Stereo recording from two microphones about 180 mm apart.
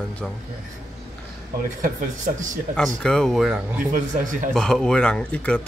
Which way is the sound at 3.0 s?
5° left (ahead or behind).